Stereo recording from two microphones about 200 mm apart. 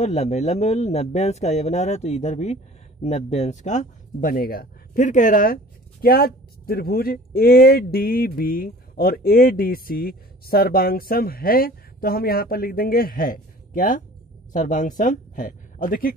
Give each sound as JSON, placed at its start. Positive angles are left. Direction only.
{"t": 0.0, "sound": "speech", "side_deg": 35}